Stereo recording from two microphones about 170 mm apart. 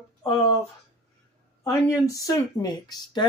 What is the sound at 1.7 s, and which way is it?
Speech, 20° left (ahead or behind).